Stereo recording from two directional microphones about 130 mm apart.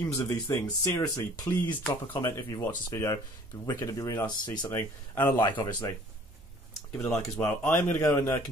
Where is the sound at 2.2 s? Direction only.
20° left (ahead or behind).